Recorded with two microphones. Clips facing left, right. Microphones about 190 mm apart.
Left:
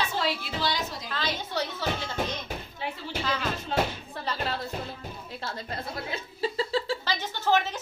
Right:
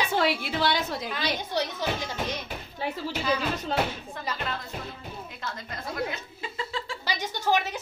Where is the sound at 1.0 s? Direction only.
15° right (ahead or behind).